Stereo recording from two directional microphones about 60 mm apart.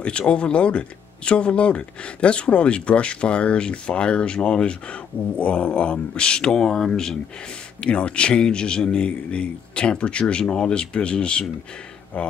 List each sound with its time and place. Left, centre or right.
0.3 s speech: centre